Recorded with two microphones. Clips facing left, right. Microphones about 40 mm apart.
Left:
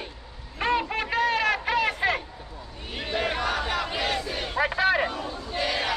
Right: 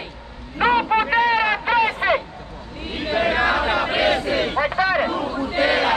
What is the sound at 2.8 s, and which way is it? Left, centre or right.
Chatter, right.